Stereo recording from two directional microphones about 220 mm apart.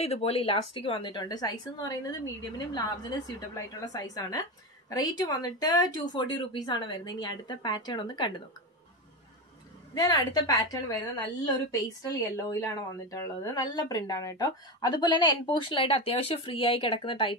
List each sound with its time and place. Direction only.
0.0 s a woman's voice: 30° left (ahead or behind)
9.9 s a woman's voice: 20° left (ahead or behind)